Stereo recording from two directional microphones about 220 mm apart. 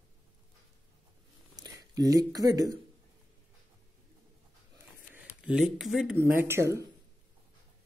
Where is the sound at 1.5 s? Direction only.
15° right (ahead or behind).